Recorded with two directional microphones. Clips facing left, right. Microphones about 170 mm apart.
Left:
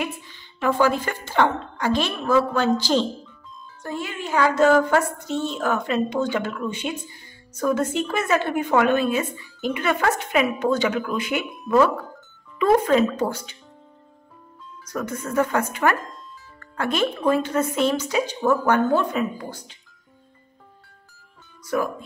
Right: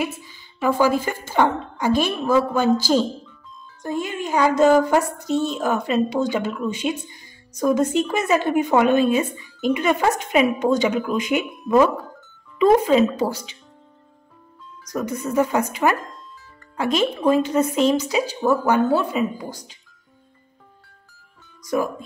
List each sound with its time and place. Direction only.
0.0 s speech: 10° right (ahead or behind)
14.9 s speech: 10° right (ahead or behind)